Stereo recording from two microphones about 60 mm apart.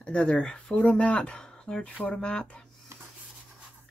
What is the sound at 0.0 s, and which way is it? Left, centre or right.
Speech, centre.